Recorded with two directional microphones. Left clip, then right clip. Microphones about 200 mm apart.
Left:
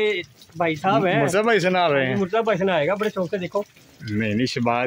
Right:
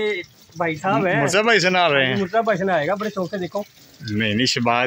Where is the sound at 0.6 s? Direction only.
45° left (ahead or behind).